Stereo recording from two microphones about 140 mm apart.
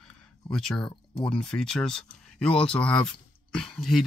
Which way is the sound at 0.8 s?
35° left (ahead or behind).